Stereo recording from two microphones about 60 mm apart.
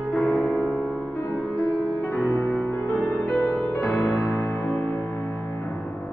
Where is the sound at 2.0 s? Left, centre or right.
Left.